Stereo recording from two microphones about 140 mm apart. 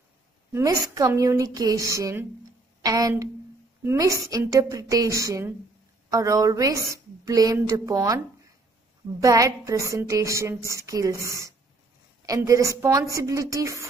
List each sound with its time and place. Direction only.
0.5 s a woman's voice: 20° right (ahead or behind)
9.2 s a woman's voice: 25° right (ahead or behind)